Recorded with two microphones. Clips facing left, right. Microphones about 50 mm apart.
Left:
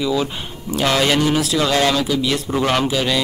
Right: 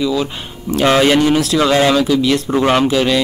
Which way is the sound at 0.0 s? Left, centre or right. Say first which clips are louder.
Right 2 dB; centre.